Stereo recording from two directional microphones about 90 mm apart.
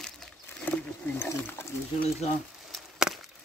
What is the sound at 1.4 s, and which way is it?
Roaring cats, 20° left (ahead or behind).